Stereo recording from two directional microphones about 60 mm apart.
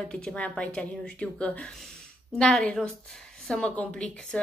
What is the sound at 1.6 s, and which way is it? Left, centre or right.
Speech, centre.